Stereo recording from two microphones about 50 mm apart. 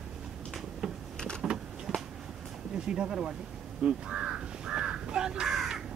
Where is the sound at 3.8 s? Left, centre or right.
Centre.